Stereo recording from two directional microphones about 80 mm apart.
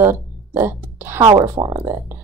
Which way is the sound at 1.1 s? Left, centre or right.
Right.